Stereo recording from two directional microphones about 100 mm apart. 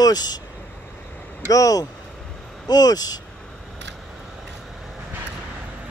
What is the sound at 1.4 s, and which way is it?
Speech, 35° left (ahead or behind).